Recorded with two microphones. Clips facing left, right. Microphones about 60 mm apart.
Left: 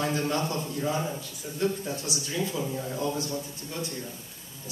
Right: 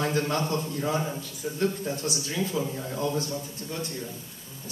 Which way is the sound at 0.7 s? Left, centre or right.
Right.